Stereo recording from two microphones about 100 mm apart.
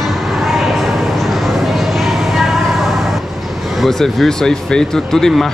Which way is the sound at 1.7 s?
Centre (ahead or behind).